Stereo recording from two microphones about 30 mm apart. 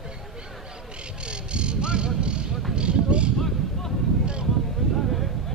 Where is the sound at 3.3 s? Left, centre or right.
Centre.